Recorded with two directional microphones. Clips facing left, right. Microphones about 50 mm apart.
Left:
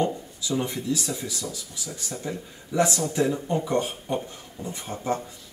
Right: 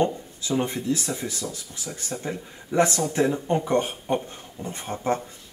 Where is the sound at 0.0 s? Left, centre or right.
Right.